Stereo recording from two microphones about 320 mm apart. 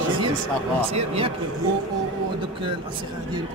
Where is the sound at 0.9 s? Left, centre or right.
Centre.